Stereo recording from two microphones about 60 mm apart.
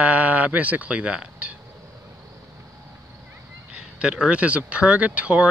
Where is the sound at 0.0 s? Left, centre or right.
Right.